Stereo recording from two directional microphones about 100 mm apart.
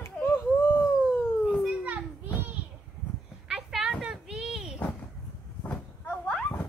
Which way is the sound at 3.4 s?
5° right (ahead or behind).